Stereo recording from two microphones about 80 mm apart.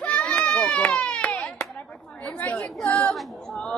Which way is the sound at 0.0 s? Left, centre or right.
Centre.